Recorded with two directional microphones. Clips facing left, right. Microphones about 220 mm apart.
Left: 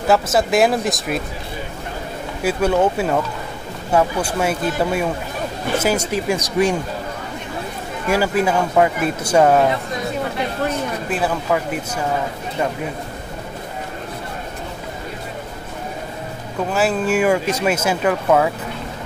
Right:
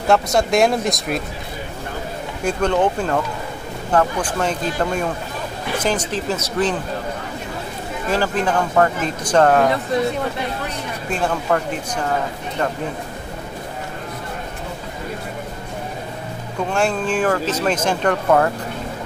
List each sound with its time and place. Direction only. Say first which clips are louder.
0.1 s speech: even; 5° left (ahead or behind)
2.4 s speech: left 1 dB; 10° left (ahead or behind)
8.1 s speech: left 2 dB; 10° left (ahead or behind)
11.1 s speech: right 2 dB; 5° left (ahead or behind)
16.7 s speech: left 2 dB; 5° left (ahead or behind)